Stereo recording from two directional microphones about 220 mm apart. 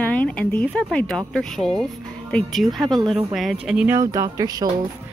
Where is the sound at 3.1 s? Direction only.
Centre (ahead or behind); by 4.7 s 15° right (ahead or behind).